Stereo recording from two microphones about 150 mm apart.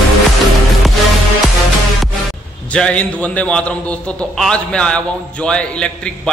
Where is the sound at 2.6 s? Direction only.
10° left (ahead or behind).